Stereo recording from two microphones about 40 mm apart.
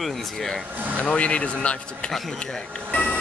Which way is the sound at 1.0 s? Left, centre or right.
Left.